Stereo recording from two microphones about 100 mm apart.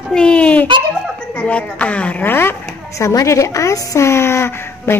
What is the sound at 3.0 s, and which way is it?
A woman's voice, 30° left (ahead or behind).